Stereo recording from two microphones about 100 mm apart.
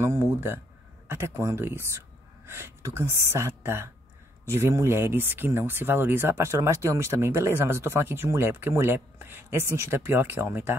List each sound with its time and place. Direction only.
0.0 s speech: 25° right (ahead or behind)